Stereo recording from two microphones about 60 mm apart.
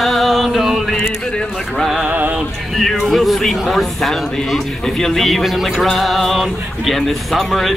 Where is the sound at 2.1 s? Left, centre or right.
Right.